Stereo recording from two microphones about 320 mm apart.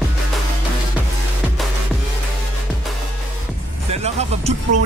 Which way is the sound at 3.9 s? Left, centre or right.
Centre.